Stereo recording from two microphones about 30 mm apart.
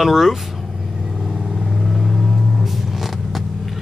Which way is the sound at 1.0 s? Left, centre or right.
Right.